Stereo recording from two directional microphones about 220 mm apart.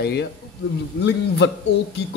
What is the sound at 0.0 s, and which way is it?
Speech, 45° left (ahead or behind).